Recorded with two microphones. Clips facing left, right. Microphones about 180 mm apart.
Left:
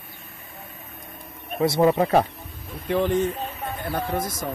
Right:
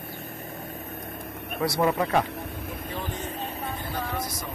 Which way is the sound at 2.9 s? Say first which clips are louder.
Left 15 dB; 45° left (ahead or behind).